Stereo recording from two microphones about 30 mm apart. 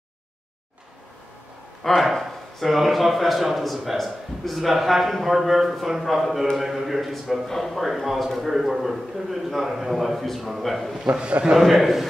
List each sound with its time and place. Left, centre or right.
1.8 s speech: centre
2.6 s a man's voice: centre
11.1 s a man's voice: right
11.6 s speech: centre